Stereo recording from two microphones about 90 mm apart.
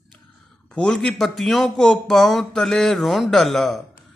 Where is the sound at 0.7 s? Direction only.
10° left (ahead or behind).